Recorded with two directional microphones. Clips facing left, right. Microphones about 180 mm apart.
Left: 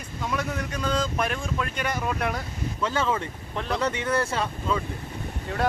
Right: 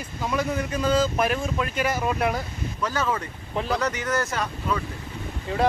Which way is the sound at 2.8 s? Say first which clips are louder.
Even; 25° left (ahead or behind).